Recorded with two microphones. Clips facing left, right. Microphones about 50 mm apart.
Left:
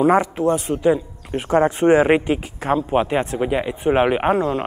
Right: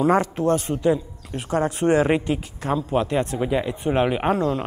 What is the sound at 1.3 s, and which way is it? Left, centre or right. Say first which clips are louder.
Speech: left 6 dB; left.